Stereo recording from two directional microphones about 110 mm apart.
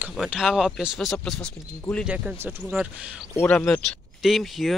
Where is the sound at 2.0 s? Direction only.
10° right (ahead or behind).